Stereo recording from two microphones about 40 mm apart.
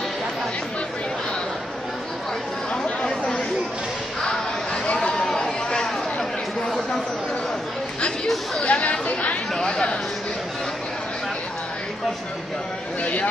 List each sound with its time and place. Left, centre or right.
2.7 s chatter: centre
4.9 s chatter: left
8.6 s chatter: left
9.5 s chatter: centre
13.0 s a sound: left